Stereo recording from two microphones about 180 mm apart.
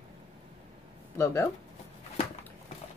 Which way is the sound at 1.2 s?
15° left (ahead or behind).